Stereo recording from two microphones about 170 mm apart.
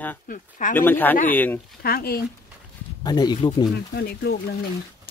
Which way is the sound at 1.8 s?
65° left (ahead or behind).